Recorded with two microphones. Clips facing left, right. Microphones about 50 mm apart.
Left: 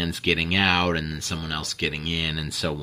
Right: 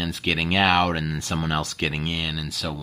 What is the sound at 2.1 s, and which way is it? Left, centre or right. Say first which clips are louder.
Speech: even; centre.